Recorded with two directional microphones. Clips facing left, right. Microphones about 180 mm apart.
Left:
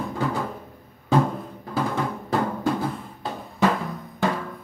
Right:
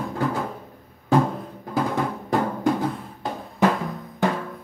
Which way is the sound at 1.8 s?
15° right (ahead or behind).